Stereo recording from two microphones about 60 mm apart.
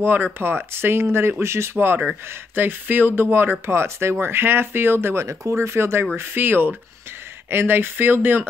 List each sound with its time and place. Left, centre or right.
0.0 s speech: right